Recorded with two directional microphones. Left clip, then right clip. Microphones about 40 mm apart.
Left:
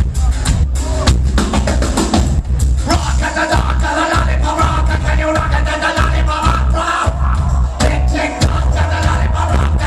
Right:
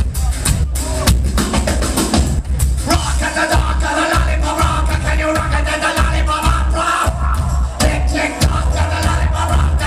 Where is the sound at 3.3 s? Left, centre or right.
Left.